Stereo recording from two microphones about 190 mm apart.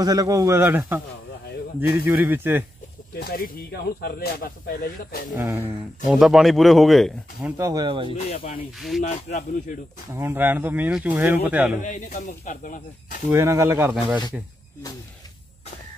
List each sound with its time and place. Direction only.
0.0 s speech: 20° right (ahead or behind)
2.0 s speech: 10° right (ahead or behind)
3.2 s speech: 50° left (ahead or behind)
5.3 s speech: 15° right (ahead or behind)
6.0 s speech: centre (ahead or behind)
7.5 s speech: 20° right (ahead or behind)
8.2 s speech: 35° left (ahead or behind)
8.7 s speech: centre (ahead or behind)
9.0 s speech: 40° left (ahead or behind)
10.1 s speech: 10° right (ahead or behind)
11.8 s speech: 40° left (ahead or behind)
13.3 s speech: 15° right (ahead or behind)